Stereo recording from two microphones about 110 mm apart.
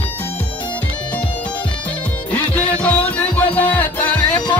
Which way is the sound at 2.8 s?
15° left (ahead or behind).